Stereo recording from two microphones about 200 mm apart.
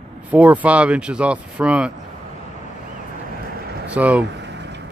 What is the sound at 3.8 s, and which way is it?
Speech, 5° right (ahead or behind).